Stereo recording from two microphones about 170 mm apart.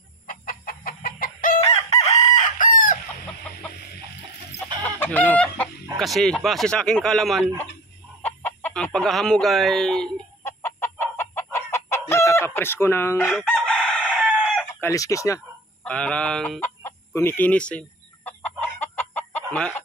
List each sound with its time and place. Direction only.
0.3 s chicken: 55° left (ahead or behind)
4.8 s chicken: 10° left (ahead or behind)
5.9 s speech: centre (ahead or behind)
8.2 s speech: 10° left (ahead or behind)
10.4 s chicken: 15° left (ahead or behind)
13.4 s chicken: 5° left (ahead or behind)
14.1 s chicken: 5° right (ahead or behind)
14.8 s a sound: 20° left (ahead or behind)
15.9 s chicken: 5° left (ahead or behind)